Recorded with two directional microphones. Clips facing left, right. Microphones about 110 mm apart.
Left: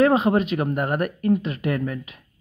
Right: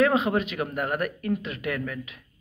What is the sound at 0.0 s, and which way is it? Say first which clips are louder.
Speech: left 4 dB; 40° left (ahead or behind).